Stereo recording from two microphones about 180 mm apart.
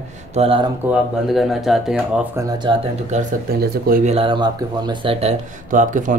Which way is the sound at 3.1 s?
40° right (ahead or behind).